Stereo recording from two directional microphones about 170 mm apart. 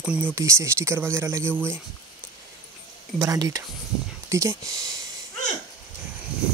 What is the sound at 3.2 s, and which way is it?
Speech, 20° right (ahead or behind).